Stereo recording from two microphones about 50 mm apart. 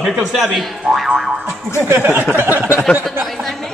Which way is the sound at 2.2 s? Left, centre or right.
Right.